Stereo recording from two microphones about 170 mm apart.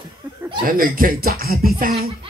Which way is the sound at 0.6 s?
55° right (ahead or behind).